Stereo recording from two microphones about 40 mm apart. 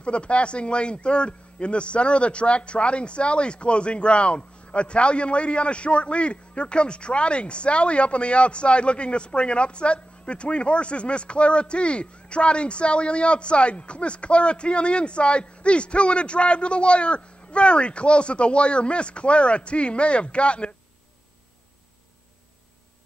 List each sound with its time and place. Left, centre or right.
0.0 s a man's voice: left